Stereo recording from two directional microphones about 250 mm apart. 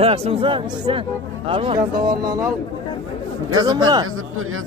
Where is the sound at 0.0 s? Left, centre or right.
Right.